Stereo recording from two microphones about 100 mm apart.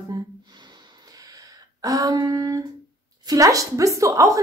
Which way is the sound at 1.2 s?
35° right (ahead or behind).